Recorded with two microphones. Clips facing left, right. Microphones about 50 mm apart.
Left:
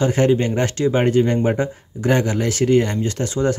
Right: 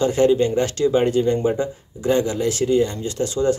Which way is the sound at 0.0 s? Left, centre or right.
Left.